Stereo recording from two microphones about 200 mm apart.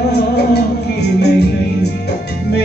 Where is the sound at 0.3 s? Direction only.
55° left (ahead or behind).